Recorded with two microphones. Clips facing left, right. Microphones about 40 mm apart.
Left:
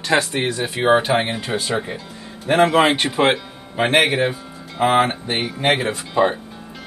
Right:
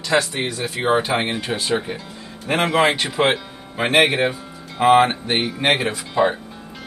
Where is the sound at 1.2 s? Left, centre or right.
Right.